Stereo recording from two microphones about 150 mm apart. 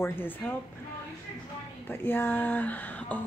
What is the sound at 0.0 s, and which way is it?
Speech, 15° left (ahead or behind).